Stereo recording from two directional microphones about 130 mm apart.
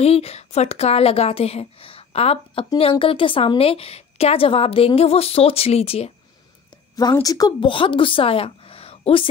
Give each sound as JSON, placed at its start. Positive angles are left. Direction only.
{"t": 0.0, "sound": "a woman's voice", "side_deg": 50}
{"t": 7.2, "sound": "a woman's voice", "side_deg": 30}